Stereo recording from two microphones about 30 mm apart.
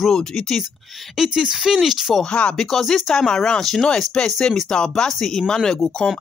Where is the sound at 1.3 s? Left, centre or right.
Right.